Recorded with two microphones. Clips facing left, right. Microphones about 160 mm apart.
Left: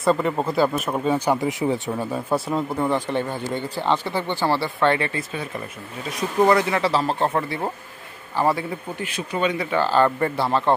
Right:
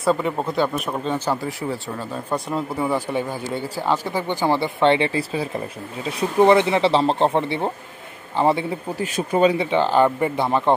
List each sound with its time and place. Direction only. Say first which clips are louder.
0.0 s speech: even; centre (ahead or behind); by 2.0 s 20° left (ahead or behind)
2.3 s speech: left 1 dB; centre (ahead or behind); by 8.6 s 25° right (ahead or behind)
8.9 s speech: right 8 dB; 40° right (ahead or behind); by 10.7 s 15° right (ahead or behind)